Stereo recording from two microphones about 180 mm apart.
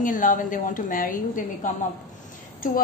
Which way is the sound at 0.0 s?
45° left (ahead or behind).